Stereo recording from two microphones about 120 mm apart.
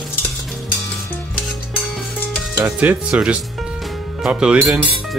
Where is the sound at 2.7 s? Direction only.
10° right (ahead or behind).